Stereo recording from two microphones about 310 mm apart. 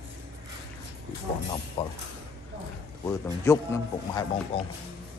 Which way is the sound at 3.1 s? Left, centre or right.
Centre.